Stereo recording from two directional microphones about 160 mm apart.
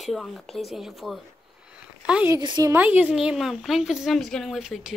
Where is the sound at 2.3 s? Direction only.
25° right (ahead or behind).